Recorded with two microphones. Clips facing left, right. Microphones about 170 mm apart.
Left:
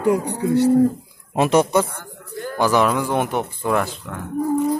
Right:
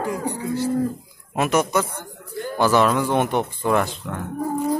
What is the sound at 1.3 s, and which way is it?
Speech, 30° left (ahead or behind).